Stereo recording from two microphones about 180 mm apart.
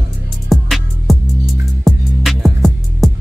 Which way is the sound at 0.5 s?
Centre (ahead or behind).